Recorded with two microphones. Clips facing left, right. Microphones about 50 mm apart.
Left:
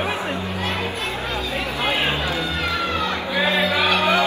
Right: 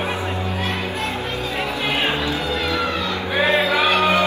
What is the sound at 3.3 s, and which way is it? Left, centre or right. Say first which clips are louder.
Music: right 3 dB; right.